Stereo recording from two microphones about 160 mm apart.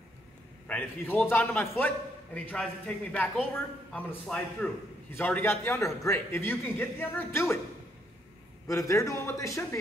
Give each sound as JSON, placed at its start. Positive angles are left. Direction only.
{"t": 0.7, "sound": "a man's voice", "side_deg": 10}
{"t": 8.6, "sound": "a man's voice", "side_deg": 20}